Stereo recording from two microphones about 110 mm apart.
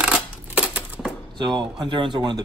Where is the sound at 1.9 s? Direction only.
45° right (ahead or behind).